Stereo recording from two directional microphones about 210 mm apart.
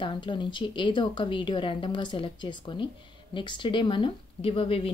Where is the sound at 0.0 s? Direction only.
25° left (ahead or behind).